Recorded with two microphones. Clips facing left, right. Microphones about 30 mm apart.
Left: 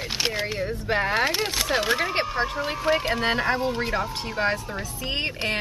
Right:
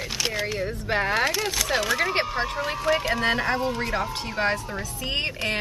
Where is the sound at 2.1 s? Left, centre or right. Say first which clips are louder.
Even; centre.